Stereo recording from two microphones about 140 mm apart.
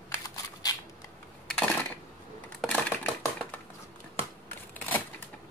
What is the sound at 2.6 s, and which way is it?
Typewriter, 10° left (ahead or behind).